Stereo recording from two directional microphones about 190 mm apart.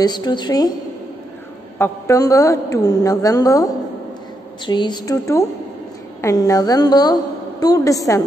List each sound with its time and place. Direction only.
0.0 s a woman's voice: 20° left (ahead or behind)
1.8 s a woman's voice: 15° left (ahead or behind)